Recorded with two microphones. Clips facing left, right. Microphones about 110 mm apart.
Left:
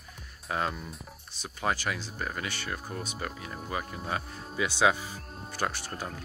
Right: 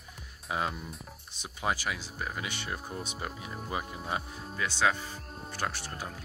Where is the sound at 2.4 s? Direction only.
20° right (ahead or behind).